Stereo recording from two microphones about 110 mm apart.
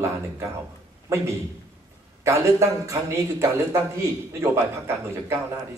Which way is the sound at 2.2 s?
25° right (ahead or behind).